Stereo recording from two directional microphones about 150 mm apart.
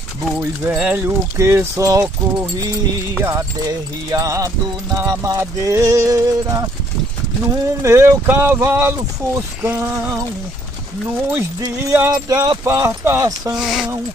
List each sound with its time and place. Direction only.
0.4 s speech: 10° right (ahead or behind)
3.2 s speech: 20° right (ahead or behind)
11.6 s speech: 20° right (ahead or behind)
13.6 s speech: centre (ahead or behind)